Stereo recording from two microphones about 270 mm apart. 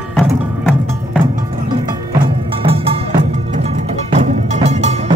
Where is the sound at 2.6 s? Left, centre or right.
Right.